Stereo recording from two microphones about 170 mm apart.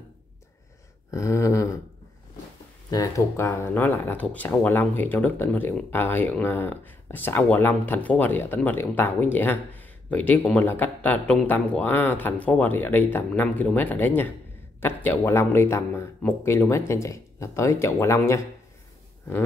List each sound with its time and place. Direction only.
1.1 s speech: 15° left (ahead or behind)
2.9 s speech: 20° left (ahead or behind)